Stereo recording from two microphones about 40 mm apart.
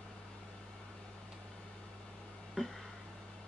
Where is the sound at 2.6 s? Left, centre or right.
Centre.